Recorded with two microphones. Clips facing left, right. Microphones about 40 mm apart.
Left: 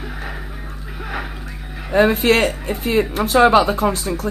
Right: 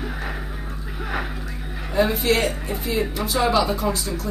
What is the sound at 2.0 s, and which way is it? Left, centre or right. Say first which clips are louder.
Speech: left 6 dB; left.